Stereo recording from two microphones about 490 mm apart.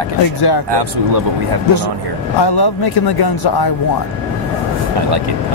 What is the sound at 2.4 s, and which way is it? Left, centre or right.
Speech, left.